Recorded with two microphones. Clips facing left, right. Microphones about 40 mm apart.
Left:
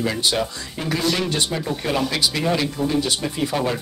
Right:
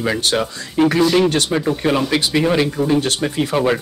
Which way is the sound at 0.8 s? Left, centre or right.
Right.